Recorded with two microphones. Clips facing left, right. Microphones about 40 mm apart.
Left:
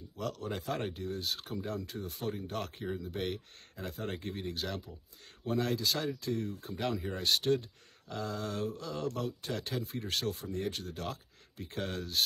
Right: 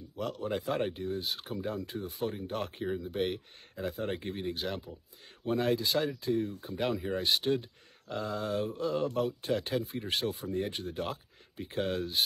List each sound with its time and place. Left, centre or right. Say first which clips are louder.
0.2 s speech: right 4 dB; centre
5.9 s speech: right 5 dB; centre
10.5 s speech: right 3 dB; right